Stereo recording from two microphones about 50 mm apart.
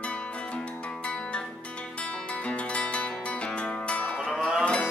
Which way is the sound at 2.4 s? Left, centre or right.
Left.